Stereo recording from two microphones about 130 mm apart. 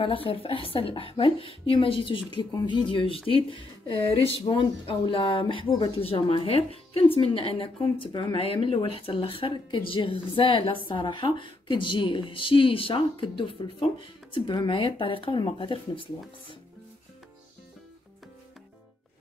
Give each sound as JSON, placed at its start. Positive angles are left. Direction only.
{"t": 0.0, "sound": "a woman's voice", "side_deg": 45}